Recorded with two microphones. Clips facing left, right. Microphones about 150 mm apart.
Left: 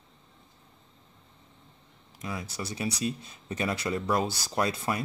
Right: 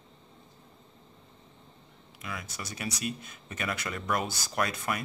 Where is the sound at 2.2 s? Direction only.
30° left (ahead or behind).